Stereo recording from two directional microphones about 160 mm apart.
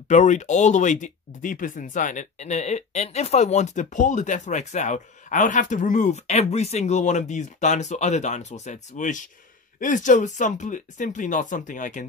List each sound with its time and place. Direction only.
0.1 s speech: 50° left (ahead or behind)